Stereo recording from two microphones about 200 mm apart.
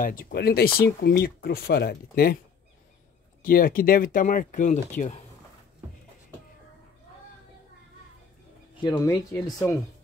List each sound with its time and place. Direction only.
0.0 s speech: 45° left (ahead or behind)
3.4 s speech: 45° left (ahead or behind)
8.8 s speech: 20° left (ahead or behind)